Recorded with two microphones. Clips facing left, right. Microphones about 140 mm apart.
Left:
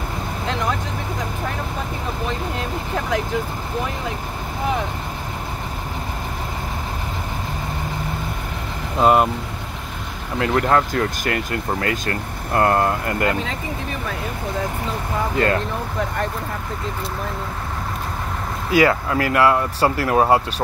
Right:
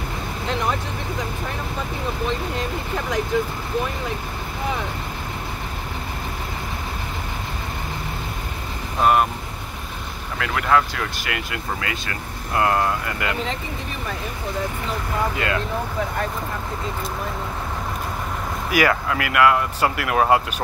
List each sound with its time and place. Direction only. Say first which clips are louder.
9.0 s speech: left 2 dB; 25° left (ahead or behind)
10.4 s speech: left 2 dB; 40° left (ahead or behind)
15.3 s speech: left 5 dB; 40° left (ahead or behind)
18.7 s speech: left 3 dB; 25° left (ahead or behind)